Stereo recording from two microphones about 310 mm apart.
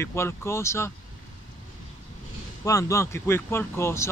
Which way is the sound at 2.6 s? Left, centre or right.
Centre.